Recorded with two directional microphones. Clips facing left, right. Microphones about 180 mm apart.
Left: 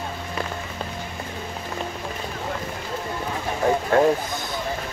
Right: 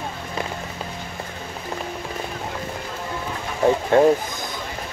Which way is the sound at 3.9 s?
20° right (ahead or behind).